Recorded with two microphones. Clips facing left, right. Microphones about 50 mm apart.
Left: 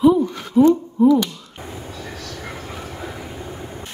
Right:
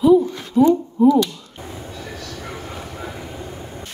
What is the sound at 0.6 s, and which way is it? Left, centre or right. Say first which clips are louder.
Speech: even; centre.